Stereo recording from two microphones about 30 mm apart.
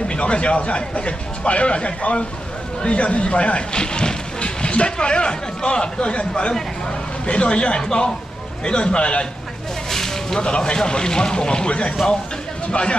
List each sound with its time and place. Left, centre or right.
0.1 s speech: left
3.7 s speech: left
4.4 s speech: left
9.8 s a sound: centre
10.4 s speech: left